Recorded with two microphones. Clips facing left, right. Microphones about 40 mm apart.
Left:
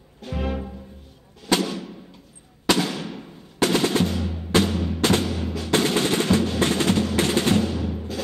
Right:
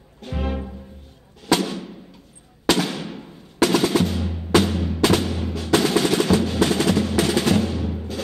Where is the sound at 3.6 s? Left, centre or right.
Left.